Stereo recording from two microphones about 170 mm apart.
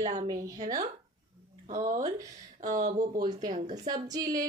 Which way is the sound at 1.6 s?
45° right (ahead or behind).